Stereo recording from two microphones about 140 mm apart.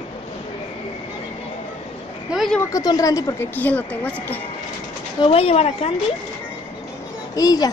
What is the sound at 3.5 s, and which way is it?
Speech, 10° left (ahead or behind).